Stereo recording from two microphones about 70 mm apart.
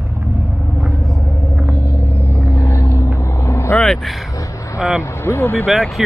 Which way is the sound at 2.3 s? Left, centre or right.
Left.